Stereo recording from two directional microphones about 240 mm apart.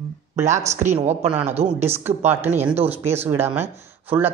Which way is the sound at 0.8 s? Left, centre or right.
Right.